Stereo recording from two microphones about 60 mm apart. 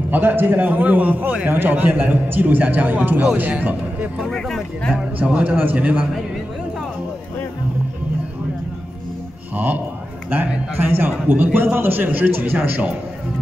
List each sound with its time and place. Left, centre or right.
0.1 s a man's voice: right
4.3 s speech: centre
4.9 s a man's voice: right
10.3 s a man's voice: right